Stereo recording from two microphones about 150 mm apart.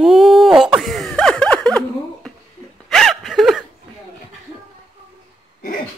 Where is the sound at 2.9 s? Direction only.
Centre (ahead or behind).